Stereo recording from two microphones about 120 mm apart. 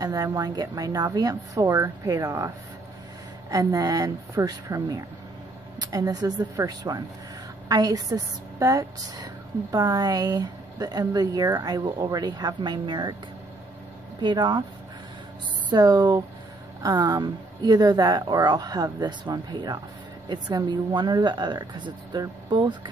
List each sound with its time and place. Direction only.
0.0 s a woman's voice: 30° right (ahead or behind)
14.2 s a woman's voice: 35° right (ahead or behind)
15.7 s a woman's voice: 35° right (ahead or behind)